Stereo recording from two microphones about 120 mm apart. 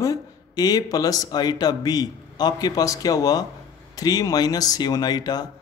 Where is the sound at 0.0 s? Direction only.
30° left (ahead or behind).